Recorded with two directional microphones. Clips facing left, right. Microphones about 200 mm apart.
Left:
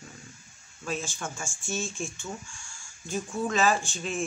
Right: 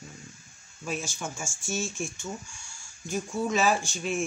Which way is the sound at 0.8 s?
15° right (ahead or behind).